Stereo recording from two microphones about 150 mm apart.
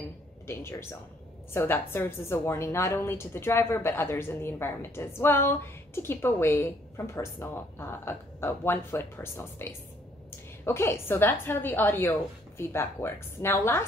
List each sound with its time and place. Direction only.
0.5 s a woman's voice: 15° left (ahead or behind)